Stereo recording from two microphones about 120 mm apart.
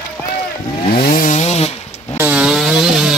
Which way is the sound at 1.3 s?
65° left (ahead or behind).